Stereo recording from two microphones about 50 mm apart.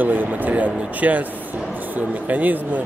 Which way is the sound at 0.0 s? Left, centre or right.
Right.